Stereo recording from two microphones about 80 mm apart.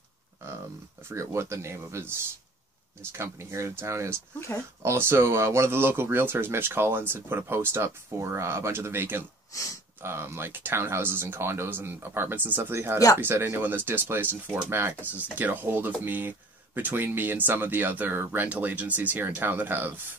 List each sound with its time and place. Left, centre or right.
1.0 s speech: right
9.5 s speech: left
10.0 s speech: right